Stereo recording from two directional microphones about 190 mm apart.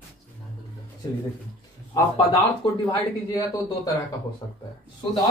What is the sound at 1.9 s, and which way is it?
Speech, 15° left (ahead or behind).